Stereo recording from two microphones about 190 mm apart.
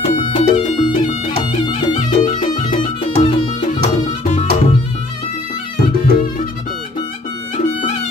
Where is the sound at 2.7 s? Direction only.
25° left (ahead or behind).